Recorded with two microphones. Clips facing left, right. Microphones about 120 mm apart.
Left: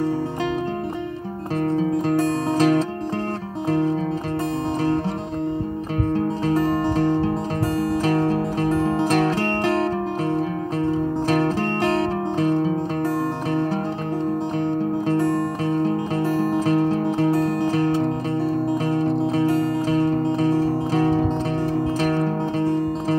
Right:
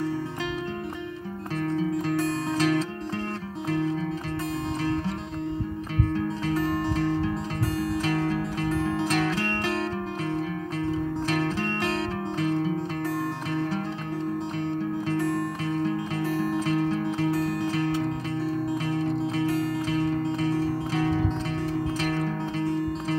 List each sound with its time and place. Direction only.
1.6 s music: 45° left (ahead or behind)
6.1 s music: 40° left (ahead or behind)
7.1 s music: 35° left (ahead or behind)
8.0 s music: 45° left (ahead or behind)
15.0 s music: 40° left (ahead or behind)